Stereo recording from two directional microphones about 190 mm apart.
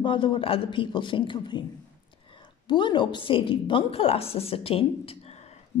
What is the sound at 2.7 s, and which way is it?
A woman's voice, 25° left (ahead or behind).